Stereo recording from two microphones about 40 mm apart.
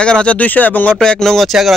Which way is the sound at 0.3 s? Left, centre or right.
Left.